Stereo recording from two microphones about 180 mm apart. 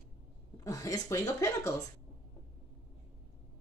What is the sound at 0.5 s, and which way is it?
Speech, 15° left (ahead or behind).